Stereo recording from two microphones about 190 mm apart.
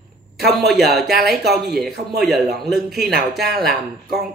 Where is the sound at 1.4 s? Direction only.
60° right (ahead or behind).